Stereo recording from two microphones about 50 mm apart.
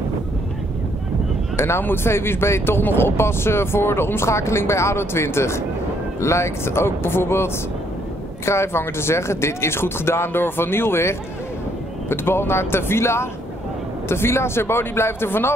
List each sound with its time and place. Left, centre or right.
1.8 s speech: left